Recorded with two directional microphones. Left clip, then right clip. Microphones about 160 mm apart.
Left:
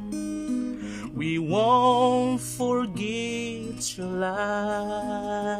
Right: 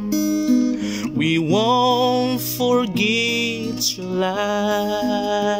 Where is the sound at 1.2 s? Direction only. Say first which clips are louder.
Right 5 dB; 5° right (ahead or behind).